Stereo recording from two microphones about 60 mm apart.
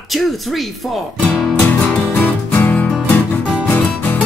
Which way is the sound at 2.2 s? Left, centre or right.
Left.